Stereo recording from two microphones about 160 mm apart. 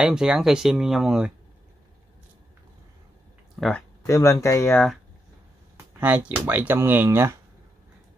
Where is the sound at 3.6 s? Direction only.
Centre (ahead or behind).